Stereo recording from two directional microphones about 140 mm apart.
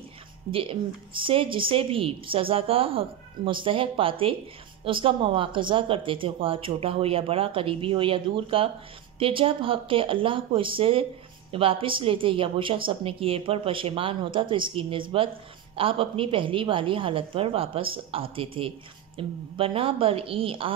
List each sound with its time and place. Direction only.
0.5 s a woman's voice: 40° right (ahead or behind)